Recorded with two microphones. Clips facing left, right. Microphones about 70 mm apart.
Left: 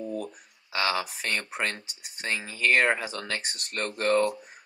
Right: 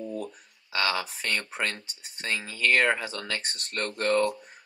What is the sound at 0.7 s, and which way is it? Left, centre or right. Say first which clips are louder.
Speech: even; centre.